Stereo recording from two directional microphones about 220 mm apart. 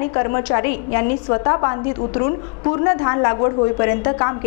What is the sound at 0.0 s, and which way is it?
A woman's voice, 20° left (ahead or behind).